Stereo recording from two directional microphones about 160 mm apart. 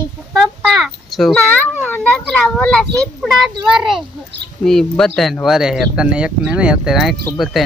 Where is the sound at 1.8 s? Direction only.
10° left (ahead or behind).